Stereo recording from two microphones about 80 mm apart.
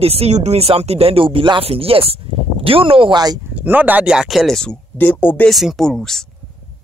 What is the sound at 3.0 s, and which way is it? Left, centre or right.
Speech, right.